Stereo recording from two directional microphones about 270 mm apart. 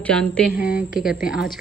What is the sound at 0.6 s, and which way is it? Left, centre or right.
Speech, left.